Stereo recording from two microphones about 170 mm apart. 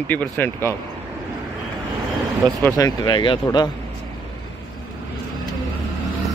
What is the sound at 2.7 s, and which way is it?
Speech, 20° left (ahead or behind).